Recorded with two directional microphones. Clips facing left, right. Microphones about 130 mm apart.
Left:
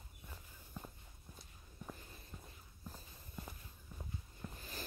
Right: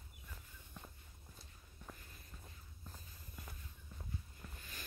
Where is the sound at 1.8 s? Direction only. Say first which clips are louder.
Left 4 dB; 10° left (ahead or behind).